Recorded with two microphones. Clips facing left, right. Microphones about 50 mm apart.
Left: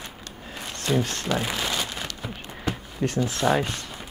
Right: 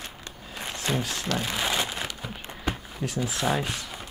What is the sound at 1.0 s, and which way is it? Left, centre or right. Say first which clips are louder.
Speech: left 4 dB; centre.